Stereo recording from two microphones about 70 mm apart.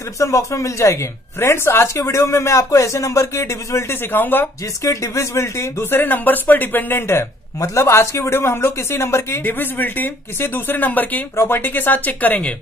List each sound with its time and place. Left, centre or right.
0.2 s speech: left
4.8 s speech: left
7.6 s speech: left